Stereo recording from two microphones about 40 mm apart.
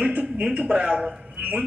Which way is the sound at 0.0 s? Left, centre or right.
Right.